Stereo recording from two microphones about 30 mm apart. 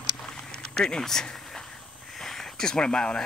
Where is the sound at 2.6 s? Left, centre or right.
Left.